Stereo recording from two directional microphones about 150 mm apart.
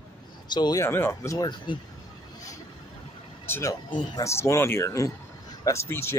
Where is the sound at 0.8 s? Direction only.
15° left (ahead or behind).